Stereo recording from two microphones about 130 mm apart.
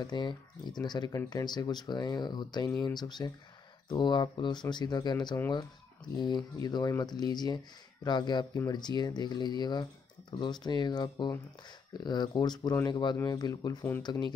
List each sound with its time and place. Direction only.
0.0 s speech: 35° left (ahead or behind)